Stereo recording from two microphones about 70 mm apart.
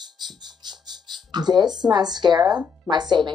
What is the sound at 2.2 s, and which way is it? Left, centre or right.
Speech, right.